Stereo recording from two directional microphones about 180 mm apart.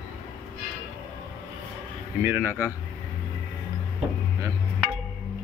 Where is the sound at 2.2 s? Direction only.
10° right (ahead or behind).